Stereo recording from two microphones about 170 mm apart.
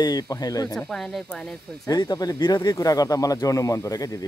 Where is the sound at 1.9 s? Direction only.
20° left (ahead or behind).